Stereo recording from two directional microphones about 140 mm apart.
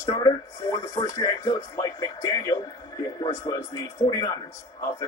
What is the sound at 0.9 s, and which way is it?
Speech, 30° left (ahead or behind).